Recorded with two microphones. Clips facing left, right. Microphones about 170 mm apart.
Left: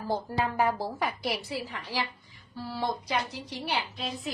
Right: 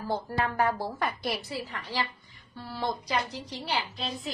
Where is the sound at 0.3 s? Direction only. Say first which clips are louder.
Even; 15° left (ahead or behind).